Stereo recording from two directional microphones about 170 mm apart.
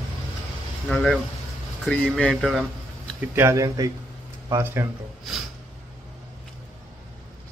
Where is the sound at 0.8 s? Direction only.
5° left (ahead or behind).